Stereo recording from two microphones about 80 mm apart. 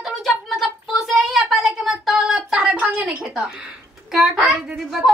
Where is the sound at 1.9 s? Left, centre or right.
Centre.